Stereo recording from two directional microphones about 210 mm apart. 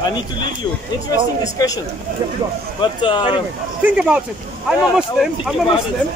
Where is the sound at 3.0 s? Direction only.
20° left (ahead or behind).